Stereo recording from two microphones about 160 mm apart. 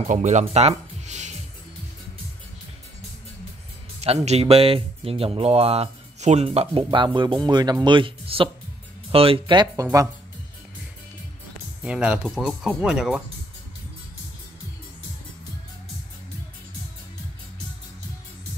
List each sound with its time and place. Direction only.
0.0 s speech: 50° right (ahead or behind)
4.0 s speech: 40° right (ahead or behind)
11.8 s speech: 5° right (ahead or behind)